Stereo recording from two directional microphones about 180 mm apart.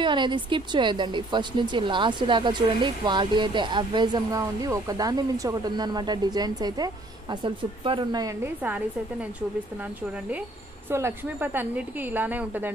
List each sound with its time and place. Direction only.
0.0 s speech: 25° right (ahead or behind)
10.9 s a woman's voice: 15° right (ahead or behind)